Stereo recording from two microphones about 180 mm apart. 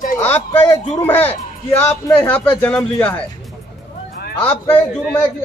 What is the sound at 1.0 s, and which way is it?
Speech, 10° left (ahead or behind).